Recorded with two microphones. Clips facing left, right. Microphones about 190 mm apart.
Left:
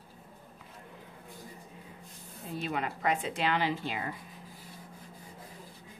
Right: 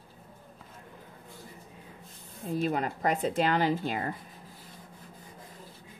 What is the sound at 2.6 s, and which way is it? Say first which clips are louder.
Speech: right 3 dB; 40° right (ahead or behind).